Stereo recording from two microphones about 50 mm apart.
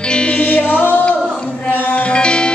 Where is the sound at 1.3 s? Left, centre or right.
Centre.